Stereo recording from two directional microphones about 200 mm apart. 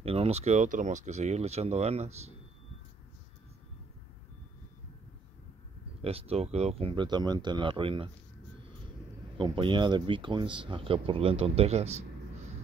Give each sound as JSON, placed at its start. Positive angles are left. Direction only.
{"t": 0.0, "sound": "speech", "side_deg": -30}
{"t": 6.0, "sound": "speech", "side_deg": -30}
{"t": 9.4, "sound": "speech", "side_deg": -25}